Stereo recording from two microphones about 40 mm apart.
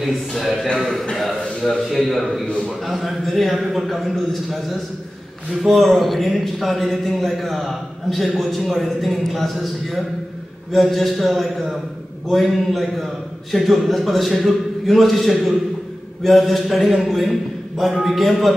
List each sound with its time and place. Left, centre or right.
0.3 s a man's voice: centre
2.4 s a man's voice: left
2.8 s a man's voice: centre
5.8 s a man's voice: centre